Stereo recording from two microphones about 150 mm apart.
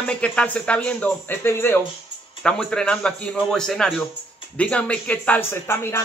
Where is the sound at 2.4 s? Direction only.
5° left (ahead or behind).